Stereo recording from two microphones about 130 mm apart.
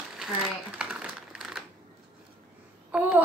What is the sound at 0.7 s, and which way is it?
Typing, 5° right (ahead or behind).